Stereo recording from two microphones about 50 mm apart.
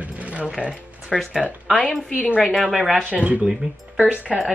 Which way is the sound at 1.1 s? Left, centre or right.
Centre.